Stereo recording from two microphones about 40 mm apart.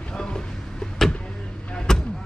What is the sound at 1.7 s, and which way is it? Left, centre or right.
Vehicle, centre.